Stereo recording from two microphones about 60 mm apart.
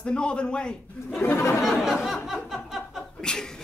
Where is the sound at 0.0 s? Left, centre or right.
Centre.